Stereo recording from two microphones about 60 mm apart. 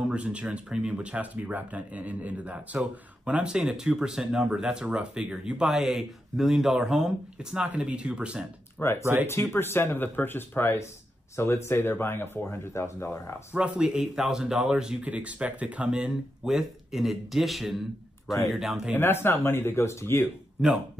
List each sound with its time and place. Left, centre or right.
0.0 s speech: centre
8.7 s speech: left
9.0 s speech: right
9.3 s speech: left
13.5 s speech: centre
18.9 s speech: left
20.6 s speech: centre